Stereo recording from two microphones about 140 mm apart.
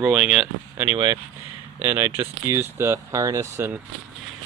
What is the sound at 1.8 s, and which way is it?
Speech, 15° right (ahead or behind).